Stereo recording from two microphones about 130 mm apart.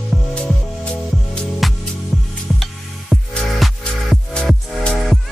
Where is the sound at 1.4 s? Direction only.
Centre (ahead or behind).